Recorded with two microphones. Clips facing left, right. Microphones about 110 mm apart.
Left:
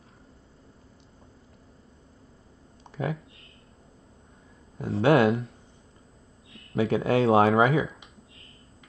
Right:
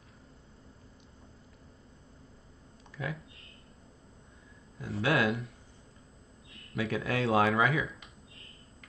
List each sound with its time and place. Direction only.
2.9 s a sound: 30° left (ahead or behind)
4.7 s speech: 30° left (ahead or behind)
6.7 s speech: 30° left (ahead or behind)